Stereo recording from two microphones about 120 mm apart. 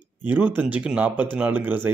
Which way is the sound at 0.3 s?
15° right (ahead or behind).